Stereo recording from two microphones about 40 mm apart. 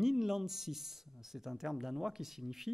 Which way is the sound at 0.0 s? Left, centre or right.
Centre.